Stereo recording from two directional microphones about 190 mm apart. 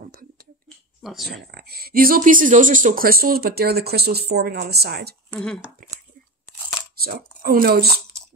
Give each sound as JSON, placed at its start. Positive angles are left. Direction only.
{"t": 0.0, "sound": "a sound", "side_deg": -50}
{"t": 1.0, "sound": "speech", "side_deg": 0}
{"t": 1.5, "sound": "speech", "side_deg": -55}
{"t": 5.3, "sound": "speech", "side_deg": 5}
{"t": 5.8, "sound": "a sound", "side_deg": -45}
{"t": 7.0, "sound": "speech", "side_deg": -55}